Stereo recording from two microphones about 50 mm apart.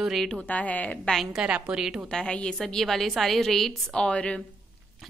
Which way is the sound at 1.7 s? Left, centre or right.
Centre.